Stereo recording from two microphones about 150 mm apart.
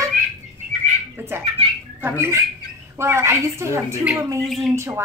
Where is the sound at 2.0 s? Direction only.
15° right (ahead or behind).